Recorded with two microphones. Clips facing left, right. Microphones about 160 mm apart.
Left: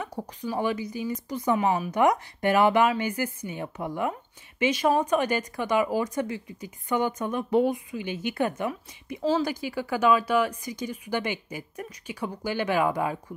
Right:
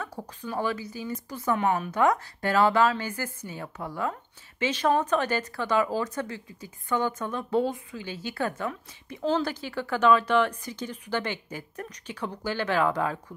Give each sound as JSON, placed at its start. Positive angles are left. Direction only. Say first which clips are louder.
{"t": 0.0, "sound": "speech", "louder": "left 3 dB", "side_deg": 15}
{"t": 1.6, "sound": "a woman's voice", "louder": "left 1 dB", "side_deg": 5}
{"t": 1.9, "sound": "speech", "louder": "left 1 dB", "side_deg": 15}